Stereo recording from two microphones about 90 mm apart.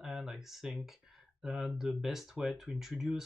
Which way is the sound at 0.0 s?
5° right (ahead or behind).